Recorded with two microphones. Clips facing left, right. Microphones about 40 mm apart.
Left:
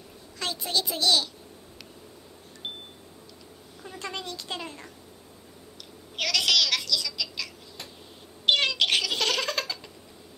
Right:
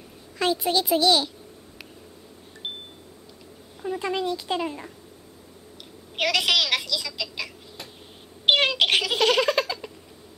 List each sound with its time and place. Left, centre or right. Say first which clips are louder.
0.7 s speech: right 4 dB; centre
3.8 s speech: right 10 dB; centre
6.1 s a sound: right 3 dB; right
8.5 s cat: right 3 dB; centre